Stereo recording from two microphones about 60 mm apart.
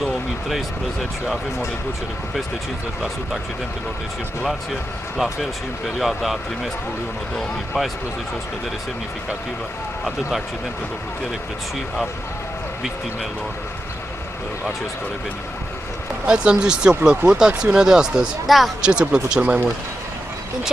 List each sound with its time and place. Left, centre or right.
0.0 s a sound: centre
5.1 s speech: centre
16.3 s speech: centre